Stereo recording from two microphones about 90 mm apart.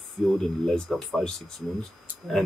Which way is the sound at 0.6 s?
5° left (ahead or behind).